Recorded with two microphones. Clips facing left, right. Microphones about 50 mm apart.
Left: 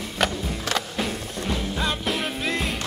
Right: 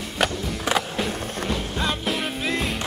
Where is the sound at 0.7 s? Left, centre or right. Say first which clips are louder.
Right 4 dB; centre.